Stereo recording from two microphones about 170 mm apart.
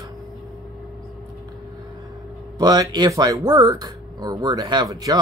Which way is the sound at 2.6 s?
25° right (ahead or behind).